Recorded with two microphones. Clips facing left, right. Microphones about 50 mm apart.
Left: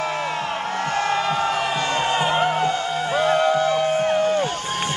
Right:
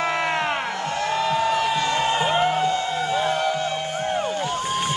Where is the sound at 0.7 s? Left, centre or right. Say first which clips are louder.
Left 2 dB; left.